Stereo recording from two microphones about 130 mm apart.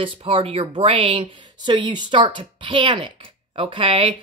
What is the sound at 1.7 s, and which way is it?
Speech, 35° right (ahead or behind).